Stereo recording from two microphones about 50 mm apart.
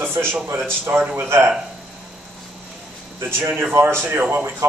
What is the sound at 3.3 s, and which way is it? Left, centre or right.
Speech, right.